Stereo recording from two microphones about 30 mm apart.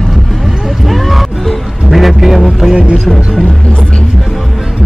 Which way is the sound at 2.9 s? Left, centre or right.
Centre.